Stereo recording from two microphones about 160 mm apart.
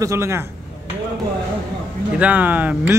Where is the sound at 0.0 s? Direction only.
15° right (ahead or behind).